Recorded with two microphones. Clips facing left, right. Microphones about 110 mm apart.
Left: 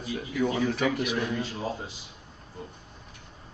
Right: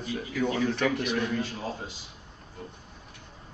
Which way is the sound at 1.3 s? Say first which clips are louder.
Even; 15° left (ahead or behind).